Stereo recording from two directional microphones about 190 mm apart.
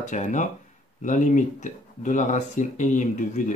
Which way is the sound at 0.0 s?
40° left (ahead or behind).